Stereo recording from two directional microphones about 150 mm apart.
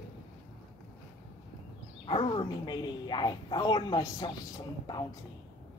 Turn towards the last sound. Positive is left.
turn(degrees=25)  # may be behind; listen again after turning